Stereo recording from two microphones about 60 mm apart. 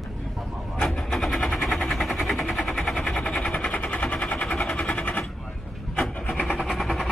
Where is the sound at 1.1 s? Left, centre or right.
Centre.